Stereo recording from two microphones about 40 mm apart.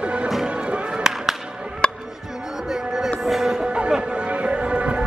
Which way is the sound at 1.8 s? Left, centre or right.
Left.